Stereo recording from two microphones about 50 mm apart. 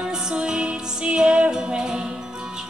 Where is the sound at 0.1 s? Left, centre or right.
Centre.